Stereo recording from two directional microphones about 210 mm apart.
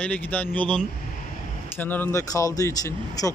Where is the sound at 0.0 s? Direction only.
5° left (ahead or behind).